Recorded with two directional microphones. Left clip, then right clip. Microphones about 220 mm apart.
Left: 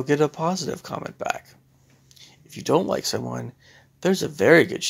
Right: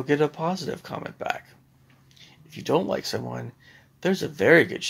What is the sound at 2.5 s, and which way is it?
Speech, 30° left (ahead or behind).